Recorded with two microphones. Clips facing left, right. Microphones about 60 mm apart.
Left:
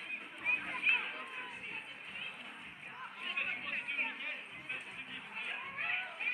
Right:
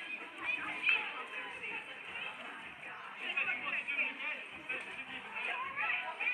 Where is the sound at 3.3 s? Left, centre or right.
Right.